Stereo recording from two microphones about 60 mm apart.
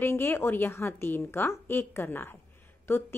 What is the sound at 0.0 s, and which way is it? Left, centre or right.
A woman's voice, left.